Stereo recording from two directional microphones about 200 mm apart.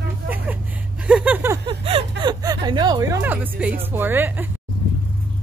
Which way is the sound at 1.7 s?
25° right (ahead or behind).